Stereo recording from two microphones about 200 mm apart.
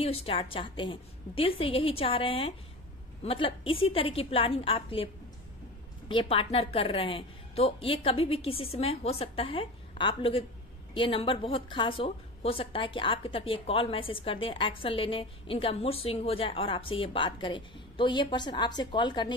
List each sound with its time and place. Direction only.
0.0 s a woman's voice: 30° left (ahead or behind)